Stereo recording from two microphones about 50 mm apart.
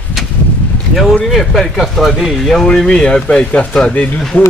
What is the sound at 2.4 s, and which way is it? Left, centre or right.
Speech, centre.